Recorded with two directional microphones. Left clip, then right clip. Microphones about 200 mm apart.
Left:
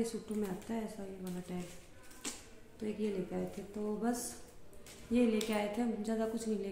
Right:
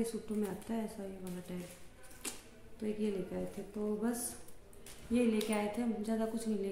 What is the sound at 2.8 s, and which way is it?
Speech, 5° right (ahead or behind).